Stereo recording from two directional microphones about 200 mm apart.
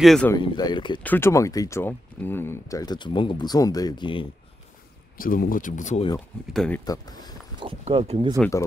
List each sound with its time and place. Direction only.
0.0 s speech: centre (ahead or behind)
0.4 s speech: 20° left (ahead or behind)
1.0 s speech: 10° left (ahead or behind)
5.1 s speech: 45° left (ahead or behind)
6.1 s speech: 5° left (ahead or behind)
6.8 s speech: 20° left (ahead or behind)
7.6 s speech: 30° right (ahead or behind)